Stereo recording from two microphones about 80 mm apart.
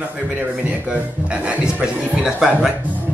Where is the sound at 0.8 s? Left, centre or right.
Centre.